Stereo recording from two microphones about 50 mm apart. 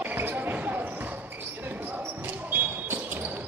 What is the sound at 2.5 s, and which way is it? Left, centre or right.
Basketball bounce, right.